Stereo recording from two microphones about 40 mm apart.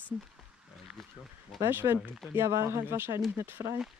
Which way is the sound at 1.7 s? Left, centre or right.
Right.